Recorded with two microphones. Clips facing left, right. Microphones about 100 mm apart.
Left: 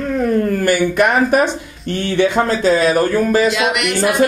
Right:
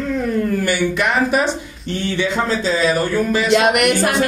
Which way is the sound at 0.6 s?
50° left (ahead or behind).